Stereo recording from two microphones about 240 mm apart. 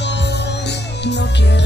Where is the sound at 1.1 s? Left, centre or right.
Left.